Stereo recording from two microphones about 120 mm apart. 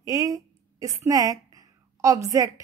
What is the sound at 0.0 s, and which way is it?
A woman's voice, 30° right (ahead or behind).